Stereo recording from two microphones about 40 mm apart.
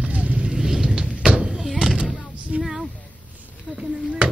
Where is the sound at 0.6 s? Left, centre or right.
Centre.